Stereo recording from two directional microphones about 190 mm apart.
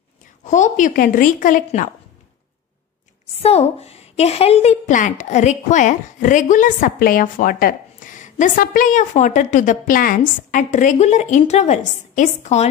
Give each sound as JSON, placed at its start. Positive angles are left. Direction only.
{"t": 0.5, "sound": "a woman's voice", "side_deg": 40}
{"t": 3.4, "sound": "a woman's voice", "side_deg": 35}